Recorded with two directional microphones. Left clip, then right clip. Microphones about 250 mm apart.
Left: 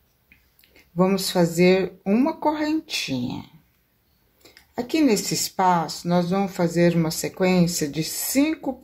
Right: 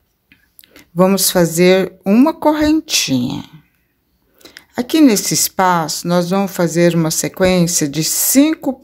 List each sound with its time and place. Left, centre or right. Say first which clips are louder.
0.6 s speech: right 9 dB; right